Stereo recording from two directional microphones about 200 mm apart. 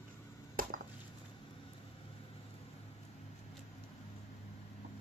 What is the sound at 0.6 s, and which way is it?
Chop, 45° right (ahead or behind).